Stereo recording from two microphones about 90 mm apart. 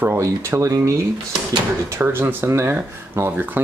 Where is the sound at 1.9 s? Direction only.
25° right (ahead or behind).